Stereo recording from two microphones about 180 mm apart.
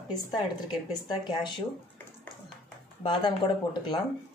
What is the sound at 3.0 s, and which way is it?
Speech, 25° left (ahead or behind).